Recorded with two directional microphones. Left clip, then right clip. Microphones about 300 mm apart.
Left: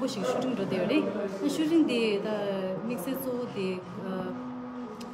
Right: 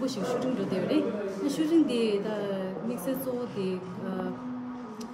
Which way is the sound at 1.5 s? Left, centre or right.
Centre.